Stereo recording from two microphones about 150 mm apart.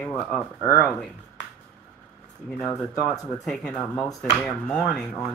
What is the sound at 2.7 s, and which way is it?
Speech, 20° left (ahead or behind).